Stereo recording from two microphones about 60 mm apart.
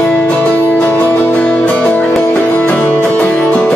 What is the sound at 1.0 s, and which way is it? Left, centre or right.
Music, centre.